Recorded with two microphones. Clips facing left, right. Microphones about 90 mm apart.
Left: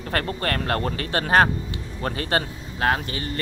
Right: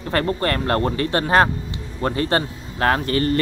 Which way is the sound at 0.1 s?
30° right (ahead or behind).